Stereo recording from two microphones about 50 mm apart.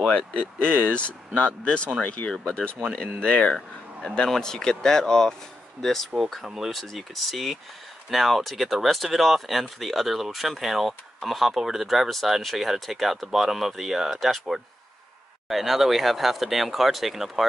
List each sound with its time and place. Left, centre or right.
0.1 s speech: left; by 6.0 s centre
6.3 s speech: centre
15.4 s speech: centre